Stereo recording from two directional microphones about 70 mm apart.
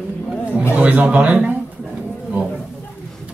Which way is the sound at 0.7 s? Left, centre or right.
Centre.